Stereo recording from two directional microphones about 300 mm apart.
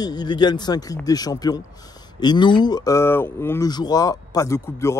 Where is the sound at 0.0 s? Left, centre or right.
Centre.